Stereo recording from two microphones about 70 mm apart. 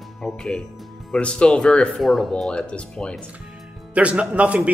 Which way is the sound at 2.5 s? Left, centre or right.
Centre.